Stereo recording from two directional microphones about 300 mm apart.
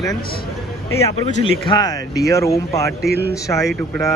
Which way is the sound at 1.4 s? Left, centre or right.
Centre.